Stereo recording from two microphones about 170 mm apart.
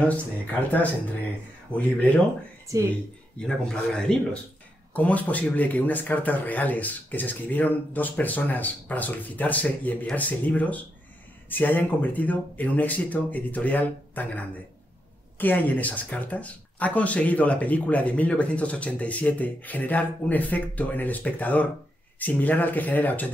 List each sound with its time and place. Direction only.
0.0 s speech: 10° left (ahead or behind)
1.8 s speech: 10° left (ahead or behind)
2.7 s speech: 20° right (ahead or behind)
3.3 s speech: 5° left (ahead or behind)